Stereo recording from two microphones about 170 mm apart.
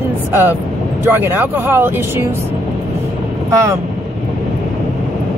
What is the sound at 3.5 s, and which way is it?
Speech, 15° right (ahead or behind).